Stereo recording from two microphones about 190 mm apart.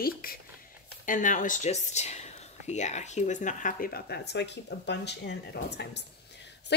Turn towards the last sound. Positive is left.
turn(degrees=65)  # may be behind; listen again after turning